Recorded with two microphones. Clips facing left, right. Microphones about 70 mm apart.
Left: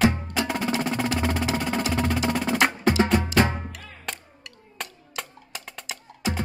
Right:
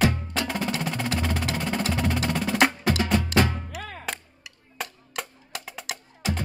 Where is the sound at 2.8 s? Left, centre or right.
Left.